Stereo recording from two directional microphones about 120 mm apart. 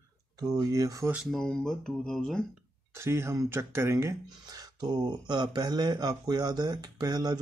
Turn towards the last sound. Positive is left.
turn(degrees=-35)  # may be behind; listen again after turning